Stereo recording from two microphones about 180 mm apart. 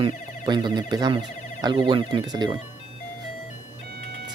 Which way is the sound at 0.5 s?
25° right (ahead or behind).